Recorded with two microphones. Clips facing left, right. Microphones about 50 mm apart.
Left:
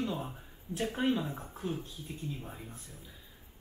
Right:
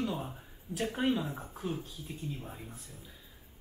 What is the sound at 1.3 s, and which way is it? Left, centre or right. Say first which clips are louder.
Speech: even; centre.